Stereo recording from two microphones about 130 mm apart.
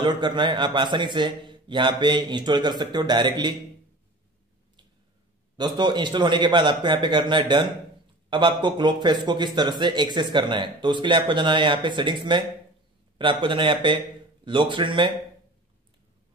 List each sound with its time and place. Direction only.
0.0 s speech: 35° right (ahead or behind)
5.6 s speech: 35° right (ahead or behind)